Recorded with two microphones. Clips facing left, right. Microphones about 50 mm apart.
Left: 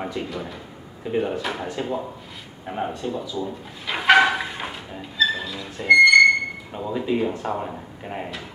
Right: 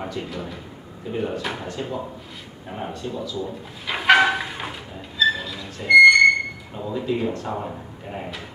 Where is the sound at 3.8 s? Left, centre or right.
Centre.